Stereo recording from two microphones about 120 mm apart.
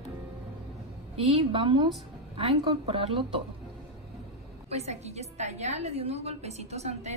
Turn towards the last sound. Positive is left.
turn(degrees=-65)  # may be behind; listen again after turning